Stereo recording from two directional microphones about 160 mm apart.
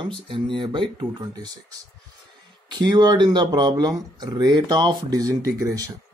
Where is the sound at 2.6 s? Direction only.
25° right (ahead or behind).